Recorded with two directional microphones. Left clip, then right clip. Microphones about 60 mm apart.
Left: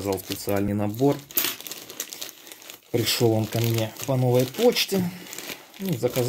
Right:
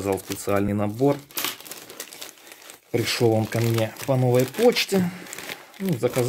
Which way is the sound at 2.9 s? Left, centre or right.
Right.